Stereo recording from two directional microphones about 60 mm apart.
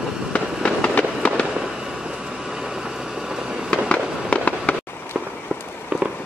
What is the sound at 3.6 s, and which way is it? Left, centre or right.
Fireworks, left.